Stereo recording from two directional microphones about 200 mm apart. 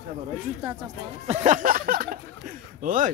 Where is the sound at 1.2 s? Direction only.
35° right (ahead or behind).